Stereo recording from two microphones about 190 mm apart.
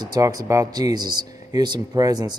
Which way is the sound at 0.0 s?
20° right (ahead or behind).